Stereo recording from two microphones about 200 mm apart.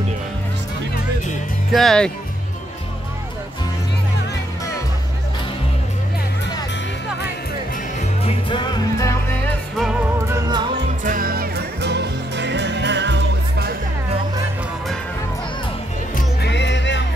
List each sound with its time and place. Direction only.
1.7 s speech: centre (ahead or behind)
8.2 s music: 25° left (ahead or behind)
9.8 s music: 5° right (ahead or behind)
10.2 s music: 20° right (ahead or behind)
11.1 s music: 45° right (ahead or behind)
16.2 s music: 55° left (ahead or behind)